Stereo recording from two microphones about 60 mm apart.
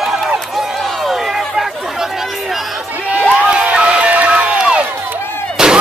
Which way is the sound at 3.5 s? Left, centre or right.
Centre.